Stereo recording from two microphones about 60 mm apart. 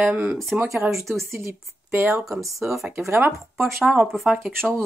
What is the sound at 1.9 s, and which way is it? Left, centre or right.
Speech, right.